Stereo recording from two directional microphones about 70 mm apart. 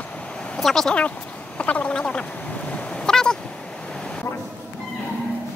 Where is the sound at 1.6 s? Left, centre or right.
Centre.